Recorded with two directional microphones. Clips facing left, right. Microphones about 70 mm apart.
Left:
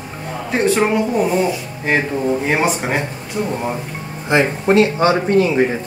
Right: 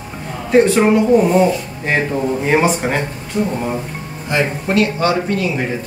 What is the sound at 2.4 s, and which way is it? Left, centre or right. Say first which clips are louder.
Speech: right 3 dB; centre.